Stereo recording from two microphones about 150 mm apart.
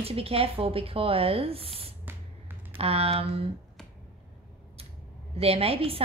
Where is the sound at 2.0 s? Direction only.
15° right (ahead or behind).